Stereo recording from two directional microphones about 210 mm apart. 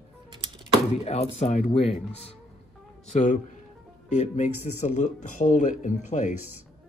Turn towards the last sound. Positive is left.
turn(degrees=35)  # may be behind; listen again after turning